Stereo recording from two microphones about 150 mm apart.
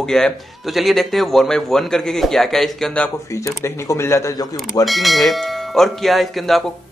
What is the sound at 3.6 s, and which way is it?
Speech, 20° left (ahead or behind).